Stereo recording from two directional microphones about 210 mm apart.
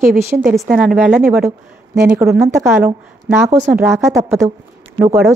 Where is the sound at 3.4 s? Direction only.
35° right (ahead or behind).